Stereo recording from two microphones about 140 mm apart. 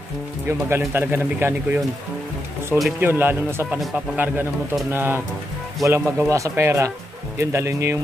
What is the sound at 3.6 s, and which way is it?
Speech, 5° right (ahead or behind).